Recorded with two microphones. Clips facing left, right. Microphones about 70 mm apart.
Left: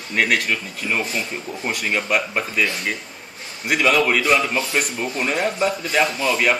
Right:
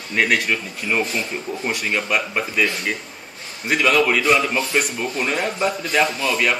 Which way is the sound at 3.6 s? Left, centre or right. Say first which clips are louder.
Even; centre.